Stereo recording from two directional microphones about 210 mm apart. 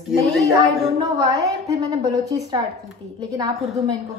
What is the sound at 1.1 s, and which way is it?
A woman's voice, 15° right (ahead or behind).